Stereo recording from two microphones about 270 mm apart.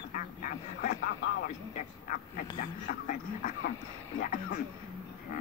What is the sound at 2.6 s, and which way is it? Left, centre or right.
A woman's voice, left.